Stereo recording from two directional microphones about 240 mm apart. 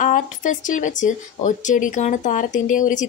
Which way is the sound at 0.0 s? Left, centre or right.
Left.